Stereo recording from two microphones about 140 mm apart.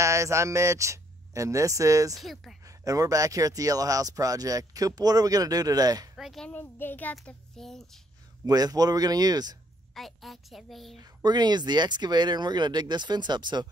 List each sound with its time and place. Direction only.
0.0 s speech: 20° right (ahead or behind)
2.1 s a woman's voice: centre (ahead or behind)
2.6 s speech: 25° right (ahead or behind)
6.1 s a child's voice: centre (ahead or behind)
8.5 s speech: 25° right (ahead or behind)
9.9 s a woman's voice: centre (ahead or behind)
11.2 s speech: 30° right (ahead or behind)